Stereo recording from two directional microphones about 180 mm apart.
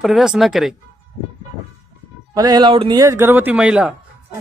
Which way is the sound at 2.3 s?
20° right (ahead or behind).